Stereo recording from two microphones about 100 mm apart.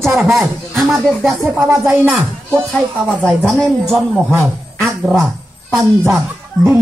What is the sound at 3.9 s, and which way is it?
Speech, centre (ahead or behind).